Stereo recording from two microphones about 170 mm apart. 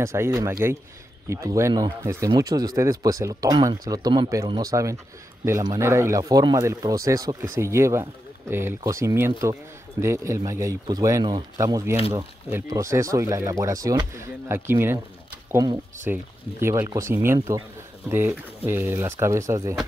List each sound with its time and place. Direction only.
0.0 s speech: 15° right (ahead or behind)